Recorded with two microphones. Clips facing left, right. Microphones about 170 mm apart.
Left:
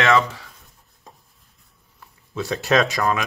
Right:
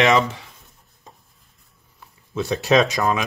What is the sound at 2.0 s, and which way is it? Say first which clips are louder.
Speech: right 2 dB; centre (ahead or behind).